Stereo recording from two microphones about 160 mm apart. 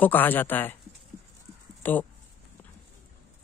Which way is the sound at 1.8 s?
10° left (ahead or behind).